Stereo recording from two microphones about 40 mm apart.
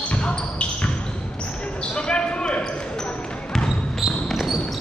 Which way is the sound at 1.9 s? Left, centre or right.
Left.